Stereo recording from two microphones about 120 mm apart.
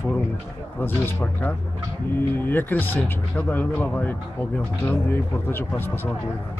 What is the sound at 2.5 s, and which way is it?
Speech, 15° left (ahead or behind).